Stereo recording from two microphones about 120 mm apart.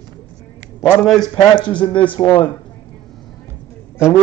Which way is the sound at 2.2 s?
30° left (ahead or behind).